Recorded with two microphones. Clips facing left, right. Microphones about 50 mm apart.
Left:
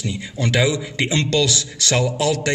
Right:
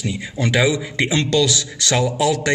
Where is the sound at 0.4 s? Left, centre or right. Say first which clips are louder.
Right 1 dB; centre.